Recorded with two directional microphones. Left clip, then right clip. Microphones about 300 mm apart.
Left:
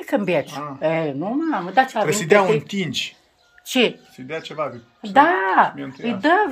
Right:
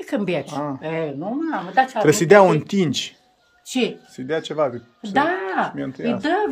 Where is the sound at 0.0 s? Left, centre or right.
Centre.